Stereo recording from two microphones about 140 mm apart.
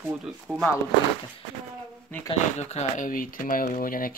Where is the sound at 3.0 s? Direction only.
80° left.